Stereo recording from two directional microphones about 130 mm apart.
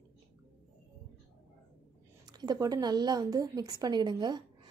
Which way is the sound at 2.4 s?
30° right (ahead or behind).